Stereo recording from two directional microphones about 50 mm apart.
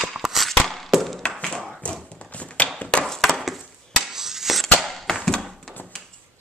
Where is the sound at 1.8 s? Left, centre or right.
Left.